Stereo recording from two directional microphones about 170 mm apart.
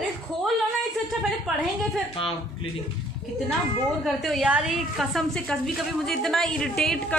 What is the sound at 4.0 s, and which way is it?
A woman's voice, centre (ahead or behind).